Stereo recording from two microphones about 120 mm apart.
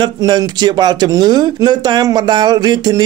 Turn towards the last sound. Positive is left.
turn(degrees=-35)  # may be behind; listen again after turning